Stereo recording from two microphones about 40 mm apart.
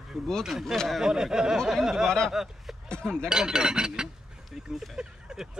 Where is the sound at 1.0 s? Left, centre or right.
Centre.